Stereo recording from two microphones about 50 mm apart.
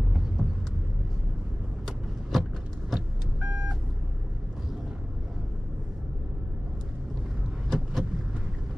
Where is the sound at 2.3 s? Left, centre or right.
Centre.